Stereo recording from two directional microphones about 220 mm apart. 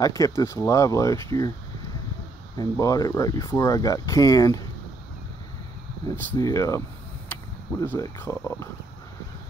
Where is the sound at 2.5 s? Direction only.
15° left (ahead or behind).